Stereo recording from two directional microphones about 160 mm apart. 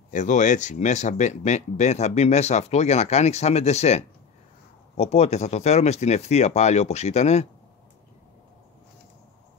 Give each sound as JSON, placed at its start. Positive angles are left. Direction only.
{"t": 0.1, "sound": "speech", "side_deg": 50}